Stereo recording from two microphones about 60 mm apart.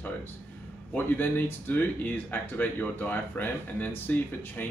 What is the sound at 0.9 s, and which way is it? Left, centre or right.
Speech, left.